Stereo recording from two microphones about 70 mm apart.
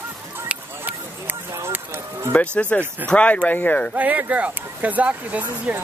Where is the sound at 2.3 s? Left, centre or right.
Centre.